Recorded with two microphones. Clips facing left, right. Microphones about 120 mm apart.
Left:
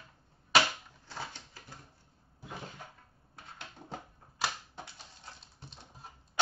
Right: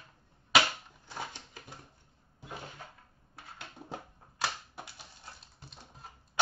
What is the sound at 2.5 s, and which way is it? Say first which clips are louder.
Cupboard open or close: even; centre (ahead or behind).